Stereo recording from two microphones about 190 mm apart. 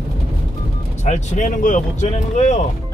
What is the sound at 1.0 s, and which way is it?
Speech, 40° left (ahead or behind).